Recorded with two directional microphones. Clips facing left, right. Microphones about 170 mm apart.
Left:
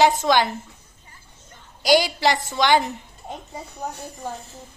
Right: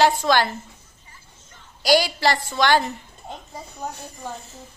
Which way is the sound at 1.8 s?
20° left (ahead or behind).